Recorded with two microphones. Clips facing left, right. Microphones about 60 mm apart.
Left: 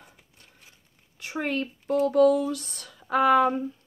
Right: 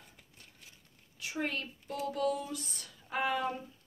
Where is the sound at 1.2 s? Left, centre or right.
Left.